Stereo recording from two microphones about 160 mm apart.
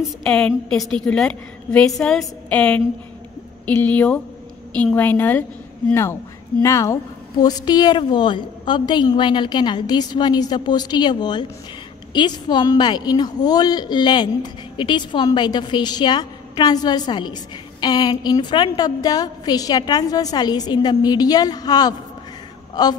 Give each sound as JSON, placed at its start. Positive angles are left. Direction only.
{"t": 0.2, "sound": "a woman's voice", "side_deg": 5}
{"t": 6.6, "sound": "a woman's voice", "side_deg": 20}